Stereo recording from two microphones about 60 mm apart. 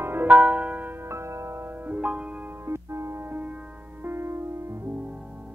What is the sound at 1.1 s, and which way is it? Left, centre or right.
Music, right.